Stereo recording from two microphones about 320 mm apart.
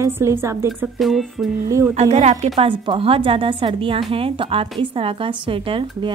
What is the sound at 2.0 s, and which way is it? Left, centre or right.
A woman's voice, right.